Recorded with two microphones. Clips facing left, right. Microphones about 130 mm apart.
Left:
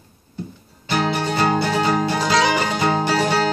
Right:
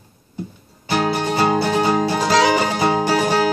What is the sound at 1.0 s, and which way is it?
Music, 15° right (ahead or behind).